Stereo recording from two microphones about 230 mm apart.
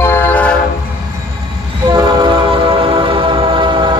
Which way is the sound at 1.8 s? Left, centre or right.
Centre.